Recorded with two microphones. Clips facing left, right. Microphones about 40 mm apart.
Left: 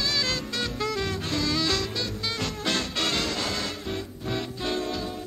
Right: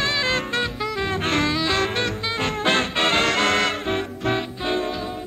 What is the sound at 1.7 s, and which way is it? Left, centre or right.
Music, right.